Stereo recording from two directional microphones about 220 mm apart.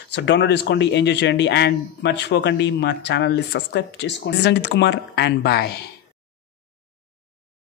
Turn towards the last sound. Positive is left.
turn(degrees=45)  # may be behind; listen again after turning